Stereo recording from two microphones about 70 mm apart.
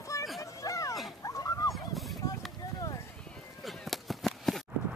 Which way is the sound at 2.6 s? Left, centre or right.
Left.